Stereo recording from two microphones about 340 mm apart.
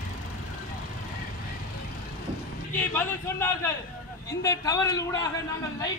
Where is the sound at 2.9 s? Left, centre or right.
Centre.